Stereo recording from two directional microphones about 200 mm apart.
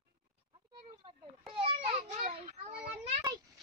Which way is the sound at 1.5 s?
25° right (ahead or behind).